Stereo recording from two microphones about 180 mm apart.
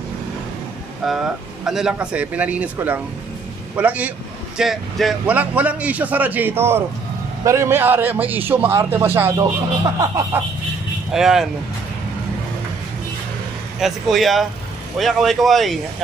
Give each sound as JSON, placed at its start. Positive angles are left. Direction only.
{"t": 1.0, "sound": "a man's voice", "side_deg": -5}
{"t": 11.1, "sound": "speech", "side_deg": -5}
{"t": 13.7, "sound": "speech", "side_deg": 0}